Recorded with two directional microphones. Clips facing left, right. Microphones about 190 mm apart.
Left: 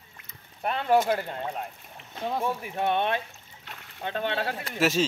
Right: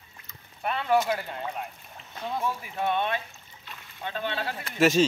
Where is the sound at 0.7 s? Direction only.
40° left (ahead or behind).